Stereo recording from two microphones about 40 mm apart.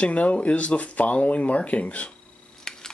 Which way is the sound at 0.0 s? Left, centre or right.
Left.